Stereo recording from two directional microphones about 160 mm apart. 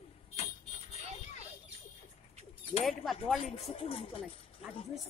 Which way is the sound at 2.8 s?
Centre (ahead or behind).